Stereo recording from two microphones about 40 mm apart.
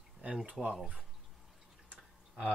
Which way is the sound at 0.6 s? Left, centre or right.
Centre.